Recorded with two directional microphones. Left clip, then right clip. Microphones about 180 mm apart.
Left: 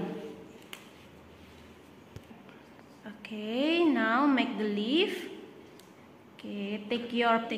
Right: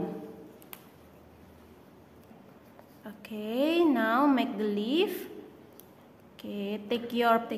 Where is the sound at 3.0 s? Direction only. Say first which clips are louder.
Right 1 dB; 35° right (ahead or behind).